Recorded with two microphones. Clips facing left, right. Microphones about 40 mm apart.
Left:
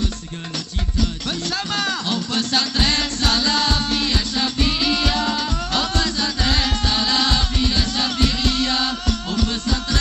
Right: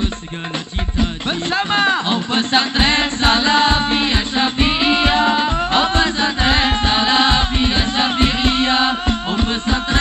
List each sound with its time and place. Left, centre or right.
1.5 s music: right